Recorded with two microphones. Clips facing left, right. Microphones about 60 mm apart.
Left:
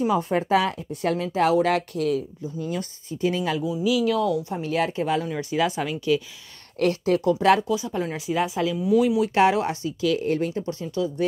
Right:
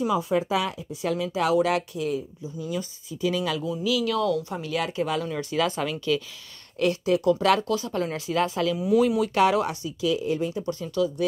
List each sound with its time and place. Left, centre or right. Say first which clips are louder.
0.0 s speech: left 1 dB; left
2.0 s speech: left 4 dB; left
2.7 s speech: left 1 dB; left
3.3 s speech: left 2 dB; left
6.8 s speech: left 1 dB; left
7.3 s speech: left 3 dB; left
7.6 s speech: left 1 dB; centre
8.7 s speech: left 2 dB; centre
9.2 s speech: left 2 dB; left
10.0 s speech: left 2 dB; left
10.8 s speech: right 1 dB; left